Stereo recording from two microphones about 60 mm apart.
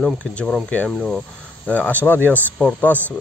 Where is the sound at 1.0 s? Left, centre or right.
Centre.